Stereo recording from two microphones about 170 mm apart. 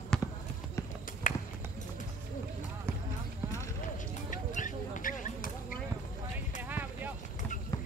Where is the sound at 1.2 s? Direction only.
50° left (ahead or behind).